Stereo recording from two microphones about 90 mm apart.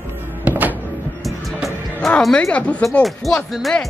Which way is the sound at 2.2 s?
10° left (ahead or behind).